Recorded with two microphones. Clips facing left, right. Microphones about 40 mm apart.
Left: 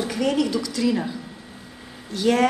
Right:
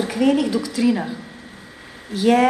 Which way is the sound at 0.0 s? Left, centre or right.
Centre.